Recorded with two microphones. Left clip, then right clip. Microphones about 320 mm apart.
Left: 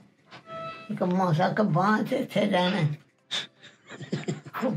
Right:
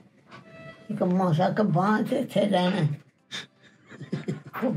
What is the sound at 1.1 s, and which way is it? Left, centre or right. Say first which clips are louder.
Speech: even; centre.